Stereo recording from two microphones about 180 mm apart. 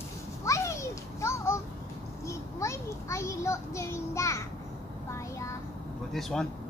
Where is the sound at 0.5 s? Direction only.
15° left (ahead or behind).